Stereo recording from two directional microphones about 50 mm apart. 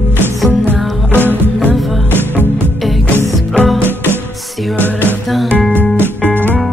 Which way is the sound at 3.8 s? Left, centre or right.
Right.